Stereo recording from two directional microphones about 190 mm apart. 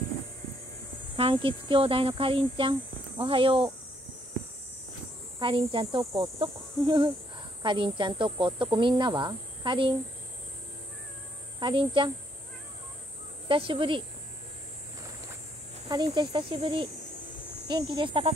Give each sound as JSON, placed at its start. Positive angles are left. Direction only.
{"t": 1.1, "sound": "speech", "side_deg": -30}
{"t": 5.4, "sound": "speech", "side_deg": -30}
{"t": 11.6, "sound": "speech", "side_deg": -25}
{"t": 13.5, "sound": "speech", "side_deg": -25}
{"t": 16.1, "sound": "speech", "side_deg": -25}